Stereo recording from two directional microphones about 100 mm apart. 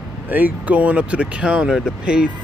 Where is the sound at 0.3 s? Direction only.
15° right (ahead or behind).